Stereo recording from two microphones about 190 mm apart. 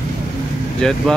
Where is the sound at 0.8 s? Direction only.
5° left (ahead or behind).